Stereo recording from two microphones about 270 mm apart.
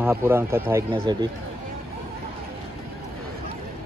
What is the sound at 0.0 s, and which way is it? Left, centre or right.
Speech, centre.